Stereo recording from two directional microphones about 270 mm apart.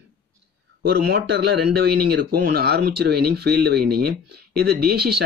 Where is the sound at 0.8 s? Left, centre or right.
Right.